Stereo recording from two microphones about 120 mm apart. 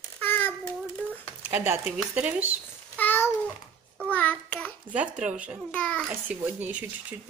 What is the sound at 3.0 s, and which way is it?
Babbling, 15° left (ahead or behind).